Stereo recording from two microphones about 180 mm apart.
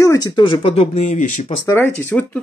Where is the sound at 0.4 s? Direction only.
30° left (ahead or behind).